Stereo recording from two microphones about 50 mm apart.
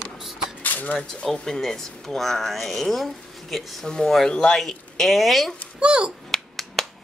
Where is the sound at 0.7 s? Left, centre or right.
Left.